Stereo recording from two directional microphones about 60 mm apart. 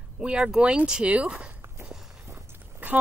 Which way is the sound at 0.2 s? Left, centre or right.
Centre.